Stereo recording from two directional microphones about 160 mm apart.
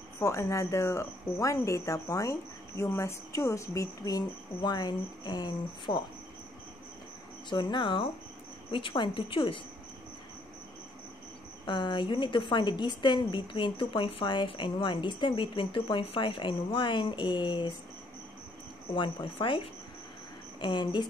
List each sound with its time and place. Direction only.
0.2 s speech: 20° left (ahead or behind)
7.4 s a woman's voice: 30° left (ahead or behind)
11.6 s a woman's voice: 30° left (ahead or behind)
18.9 s a woman's voice: 30° left (ahead or behind)